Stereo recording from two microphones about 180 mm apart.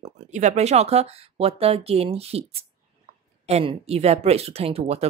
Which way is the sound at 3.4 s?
35° right (ahead or behind).